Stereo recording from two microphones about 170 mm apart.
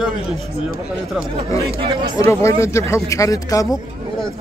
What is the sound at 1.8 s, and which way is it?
Speech, 30° right (ahead or behind).